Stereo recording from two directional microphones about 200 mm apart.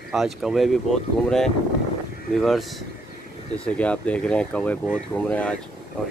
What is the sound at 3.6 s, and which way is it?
Speech, 5° left (ahead or behind).